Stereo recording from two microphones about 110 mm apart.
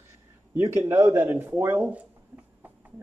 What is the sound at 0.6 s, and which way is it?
Speech, 25° right (ahead or behind).